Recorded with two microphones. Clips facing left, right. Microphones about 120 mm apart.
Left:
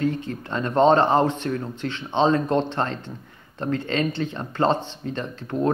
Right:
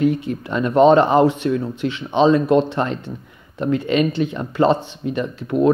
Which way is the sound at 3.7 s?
15° right (ahead or behind).